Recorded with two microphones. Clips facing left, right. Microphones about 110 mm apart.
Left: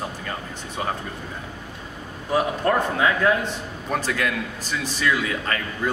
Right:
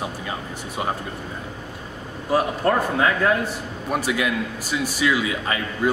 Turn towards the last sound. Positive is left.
turn(degrees=-10)  # may be behind; listen again after turning